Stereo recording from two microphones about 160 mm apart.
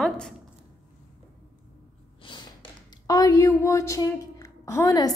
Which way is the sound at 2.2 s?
30° left (ahead or behind).